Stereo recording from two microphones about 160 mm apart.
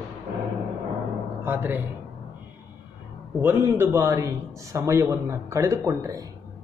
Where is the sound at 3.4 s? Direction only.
15° right (ahead or behind).